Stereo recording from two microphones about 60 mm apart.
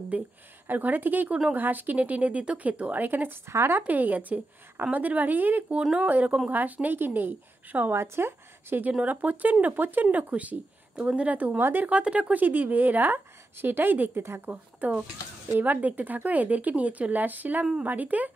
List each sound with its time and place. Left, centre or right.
0.1 s speech: right
3.4 s speech: right
3.8 s speech: right
7.9 s speech: right
8.9 s a woman's voice: right